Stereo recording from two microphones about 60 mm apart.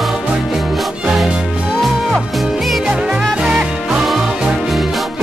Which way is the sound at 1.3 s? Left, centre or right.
Centre.